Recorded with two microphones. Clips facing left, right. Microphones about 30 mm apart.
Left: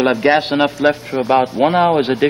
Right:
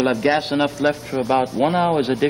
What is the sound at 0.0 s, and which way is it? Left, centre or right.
Speech, left.